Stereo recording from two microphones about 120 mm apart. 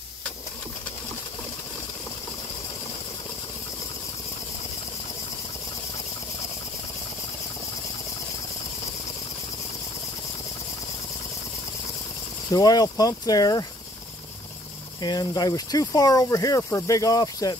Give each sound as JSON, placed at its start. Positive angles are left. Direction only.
{"t": 12.4, "sound": "speech", "side_deg": 30}
{"t": 15.0, "sound": "speech", "side_deg": 35}